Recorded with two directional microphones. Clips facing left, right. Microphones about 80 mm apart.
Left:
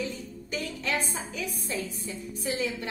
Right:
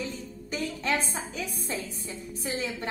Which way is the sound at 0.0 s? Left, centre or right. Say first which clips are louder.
Left 1 dB; right.